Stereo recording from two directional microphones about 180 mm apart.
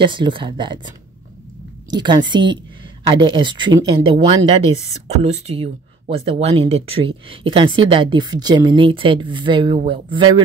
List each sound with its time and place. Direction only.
0.0 s speech: 25° right (ahead or behind)
5.0 s speech: 35° right (ahead or behind)